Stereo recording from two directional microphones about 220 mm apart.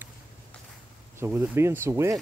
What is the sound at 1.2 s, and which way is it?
Speech, 10° right (ahead or behind).